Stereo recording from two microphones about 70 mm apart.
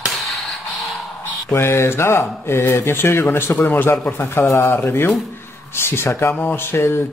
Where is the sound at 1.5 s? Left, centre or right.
Left.